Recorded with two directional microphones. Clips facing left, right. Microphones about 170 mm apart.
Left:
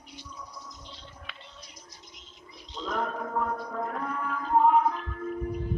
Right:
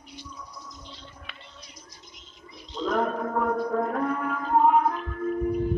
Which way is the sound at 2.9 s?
60° right (ahead or behind).